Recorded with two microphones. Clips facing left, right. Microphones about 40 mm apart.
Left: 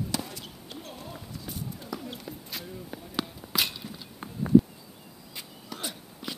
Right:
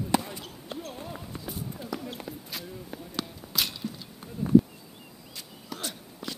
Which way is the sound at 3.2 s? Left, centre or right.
Centre.